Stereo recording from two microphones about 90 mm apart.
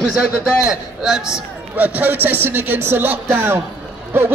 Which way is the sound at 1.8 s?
20° right (ahead or behind).